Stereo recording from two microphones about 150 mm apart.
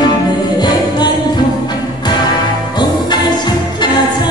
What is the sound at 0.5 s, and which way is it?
Music, 30° left (ahead or behind).